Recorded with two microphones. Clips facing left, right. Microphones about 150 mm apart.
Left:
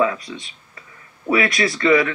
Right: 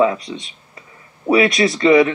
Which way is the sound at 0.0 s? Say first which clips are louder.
Right 4 dB; 25° right (ahead or behind).